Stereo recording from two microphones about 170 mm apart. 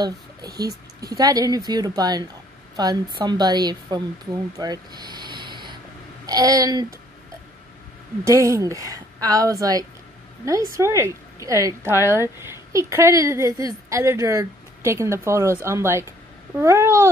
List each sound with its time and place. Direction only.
0.6 s a woman's voice: 20° right (ahead or behind)
8.3 s a woman's voice: 20° right (ahead or behind)